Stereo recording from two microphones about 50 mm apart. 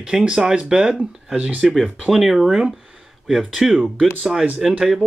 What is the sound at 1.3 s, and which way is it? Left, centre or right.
Speech, centre.